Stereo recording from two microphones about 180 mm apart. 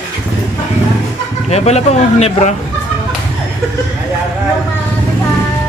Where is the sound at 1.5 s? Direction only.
35° left (ahead or behind).